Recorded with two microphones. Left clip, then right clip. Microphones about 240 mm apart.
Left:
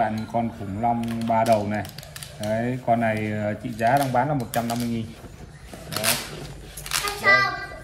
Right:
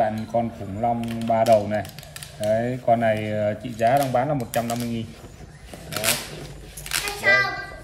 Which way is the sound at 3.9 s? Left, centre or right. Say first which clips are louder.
Left 1 dB; centre.